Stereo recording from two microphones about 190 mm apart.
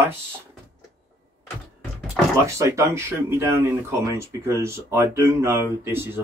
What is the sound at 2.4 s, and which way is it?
Speech, 15° right (ahead or behind).